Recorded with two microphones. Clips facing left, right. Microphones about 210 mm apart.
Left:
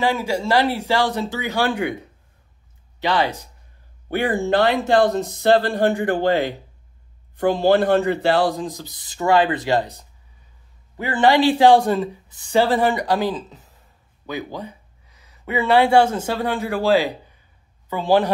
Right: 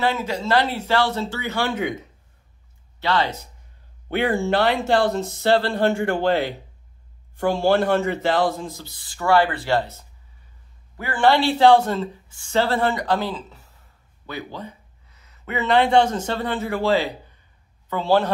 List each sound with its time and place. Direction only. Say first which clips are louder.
0.0 s a woman's voice: left 2 dB; 10° left (ahead or behind)
3.0 s speech: left 2 dB; 15° left (ahead or behind)
4.4 s a woman's voice: left 2 dB; 15° left (ahead or behind)